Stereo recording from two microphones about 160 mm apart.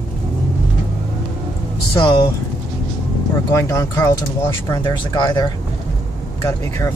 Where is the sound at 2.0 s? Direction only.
30° left (ahead or behind).